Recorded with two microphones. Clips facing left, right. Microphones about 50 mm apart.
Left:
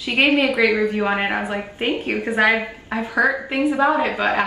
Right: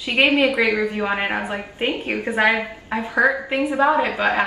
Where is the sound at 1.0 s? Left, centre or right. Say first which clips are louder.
Left 1 dB; centre.